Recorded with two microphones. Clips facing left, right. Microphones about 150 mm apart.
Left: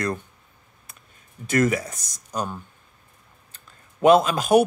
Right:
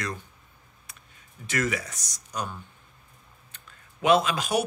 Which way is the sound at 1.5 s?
45° left (ahead or behind).